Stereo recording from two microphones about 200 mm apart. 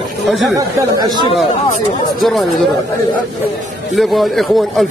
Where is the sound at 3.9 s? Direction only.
Centre (ahead or behind).